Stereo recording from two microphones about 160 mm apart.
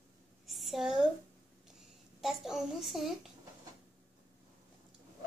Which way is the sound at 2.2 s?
Centre (ahead or behind).